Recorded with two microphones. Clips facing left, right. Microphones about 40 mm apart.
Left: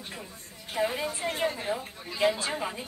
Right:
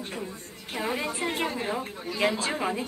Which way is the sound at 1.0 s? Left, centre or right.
Right.